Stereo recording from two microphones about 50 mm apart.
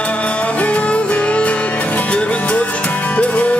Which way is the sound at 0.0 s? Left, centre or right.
Left.